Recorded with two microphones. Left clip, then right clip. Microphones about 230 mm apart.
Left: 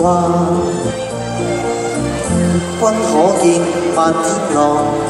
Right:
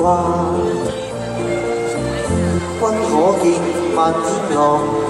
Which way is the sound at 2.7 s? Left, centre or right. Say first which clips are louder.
Left 3 dB; left.